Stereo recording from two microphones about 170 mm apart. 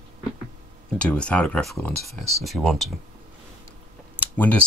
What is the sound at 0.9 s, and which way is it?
Speech, 5° left (ahead or behind).